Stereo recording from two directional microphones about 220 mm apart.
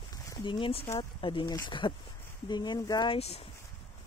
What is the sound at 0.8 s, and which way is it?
Speech, 20° left (ahead or behind).